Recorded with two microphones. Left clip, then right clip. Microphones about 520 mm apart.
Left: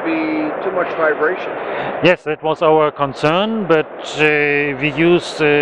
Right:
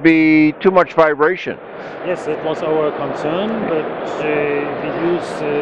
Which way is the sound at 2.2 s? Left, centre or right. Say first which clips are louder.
Left 4 dB; left.